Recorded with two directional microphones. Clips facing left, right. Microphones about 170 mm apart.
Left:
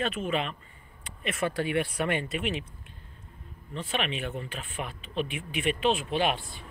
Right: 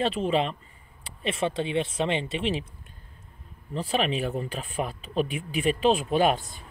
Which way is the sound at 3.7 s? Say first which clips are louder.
Right 5 dB; 35° right (ahead or behind).